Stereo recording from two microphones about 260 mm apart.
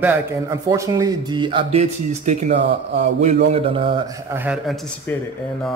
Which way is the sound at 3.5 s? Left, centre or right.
Right.